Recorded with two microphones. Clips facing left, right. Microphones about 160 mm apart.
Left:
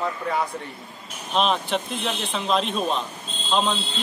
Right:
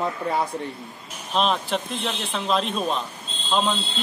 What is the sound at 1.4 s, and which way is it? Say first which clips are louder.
Speech: even; centre (ahead or behind).